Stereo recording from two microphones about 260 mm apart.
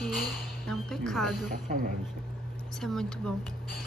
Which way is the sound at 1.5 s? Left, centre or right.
Right.